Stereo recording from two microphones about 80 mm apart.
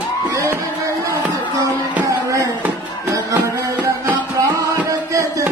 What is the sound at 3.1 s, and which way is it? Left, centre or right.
Music, right.